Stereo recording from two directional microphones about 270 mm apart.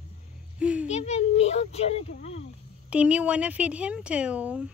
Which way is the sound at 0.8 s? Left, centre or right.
Left.